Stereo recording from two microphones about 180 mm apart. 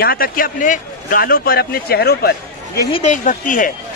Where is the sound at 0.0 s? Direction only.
55° left (ahead or behind).